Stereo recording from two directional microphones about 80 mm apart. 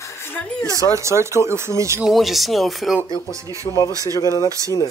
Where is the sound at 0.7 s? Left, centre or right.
Right.